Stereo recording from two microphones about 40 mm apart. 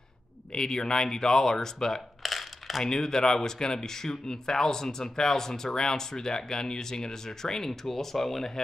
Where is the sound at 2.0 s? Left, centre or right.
Centre.